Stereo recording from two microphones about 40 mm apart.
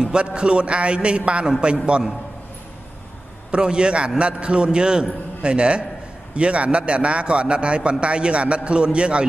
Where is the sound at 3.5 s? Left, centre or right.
Right.